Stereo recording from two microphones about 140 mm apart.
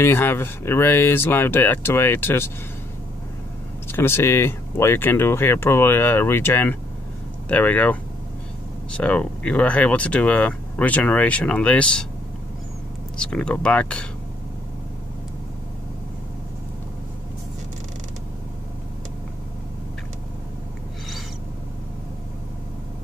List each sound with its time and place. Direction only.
0.0 s speech: 15° left (ahead or behind)
3.9 s speech: 15° left (ahead or behind)
13.2 s speech: 5° left (ahead or behind)